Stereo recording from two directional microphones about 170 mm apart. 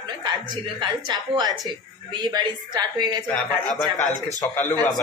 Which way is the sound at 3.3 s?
5° left (ahead or behind).